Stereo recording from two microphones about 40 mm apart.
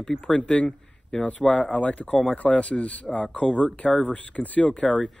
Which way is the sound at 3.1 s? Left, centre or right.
Left.